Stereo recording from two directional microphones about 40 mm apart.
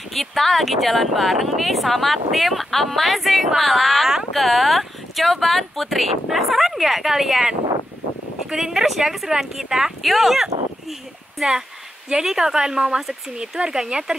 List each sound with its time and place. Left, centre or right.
0.1 s speech: centre
8.5 s speech: centre
10.0 s speech: centre